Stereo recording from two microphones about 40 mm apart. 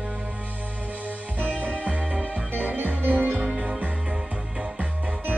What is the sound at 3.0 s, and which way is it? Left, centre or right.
Music, right.